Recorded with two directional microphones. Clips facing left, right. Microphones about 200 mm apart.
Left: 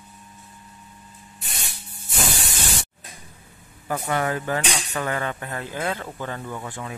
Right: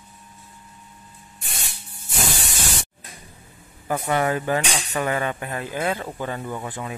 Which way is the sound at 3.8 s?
20° right (ahead or behind).